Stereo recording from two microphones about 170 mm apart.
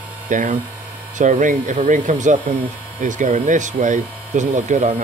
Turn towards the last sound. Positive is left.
turn(degrees=-45)  # may be behind; listen again after turning